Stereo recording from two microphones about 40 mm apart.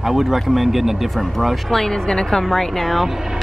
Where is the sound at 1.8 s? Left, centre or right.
Centre.